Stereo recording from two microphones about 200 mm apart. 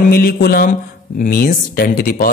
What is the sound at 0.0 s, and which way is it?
A man's voice, 50° left (ahead or behind).